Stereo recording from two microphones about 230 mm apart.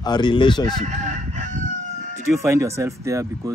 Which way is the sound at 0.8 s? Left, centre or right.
Right.